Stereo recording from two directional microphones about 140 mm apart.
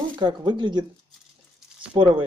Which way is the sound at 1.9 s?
35° right (ahead or behind).